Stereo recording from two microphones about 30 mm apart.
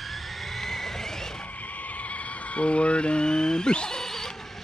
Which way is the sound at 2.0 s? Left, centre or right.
Left.